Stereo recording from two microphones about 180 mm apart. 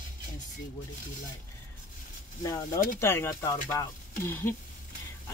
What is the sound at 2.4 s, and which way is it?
Speech, 15° left (ahead or behind).